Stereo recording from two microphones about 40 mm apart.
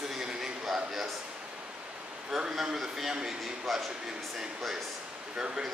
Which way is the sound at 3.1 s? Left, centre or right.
Centre.